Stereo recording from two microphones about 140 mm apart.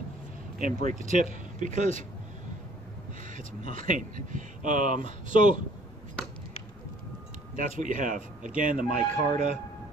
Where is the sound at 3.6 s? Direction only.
65° right (ahead or behind).